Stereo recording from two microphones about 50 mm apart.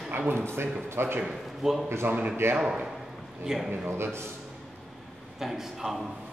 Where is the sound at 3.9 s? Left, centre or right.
Right.